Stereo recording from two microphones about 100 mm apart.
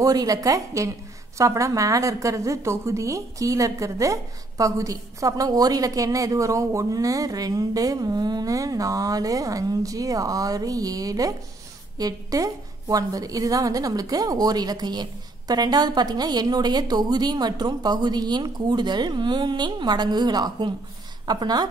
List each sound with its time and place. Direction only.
0.0 s a woman's voice: 40° right (ahead or behind)